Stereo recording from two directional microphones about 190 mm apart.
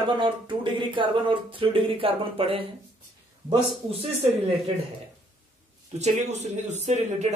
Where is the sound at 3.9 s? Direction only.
30° right (ahead or behind).